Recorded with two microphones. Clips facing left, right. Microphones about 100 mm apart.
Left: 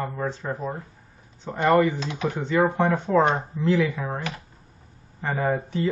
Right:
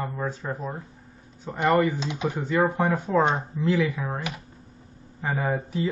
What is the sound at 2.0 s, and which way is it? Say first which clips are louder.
Speech: even; 15° right (ahead or behind).